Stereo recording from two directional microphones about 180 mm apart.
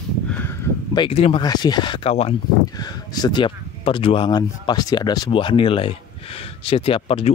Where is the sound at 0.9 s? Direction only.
30° left (ahead or behind).